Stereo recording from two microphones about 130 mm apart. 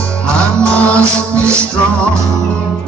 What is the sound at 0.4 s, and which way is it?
Music, 10° left (ahead or behind).